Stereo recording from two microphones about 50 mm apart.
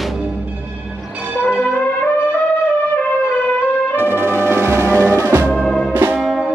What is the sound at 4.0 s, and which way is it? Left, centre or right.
Music, right.